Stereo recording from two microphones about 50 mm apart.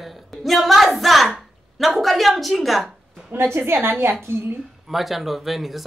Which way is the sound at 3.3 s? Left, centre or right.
Right.